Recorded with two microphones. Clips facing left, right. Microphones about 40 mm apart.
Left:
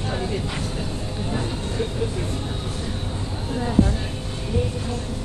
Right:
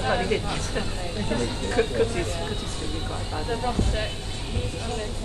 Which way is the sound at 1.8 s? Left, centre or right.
Right.